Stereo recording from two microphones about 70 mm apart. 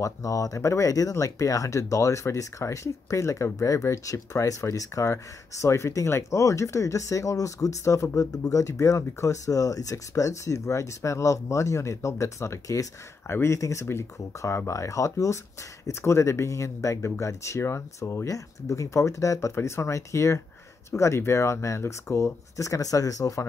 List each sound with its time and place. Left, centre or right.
0.0 s speech: left
8.2 s speech: left
18.3 s speech: left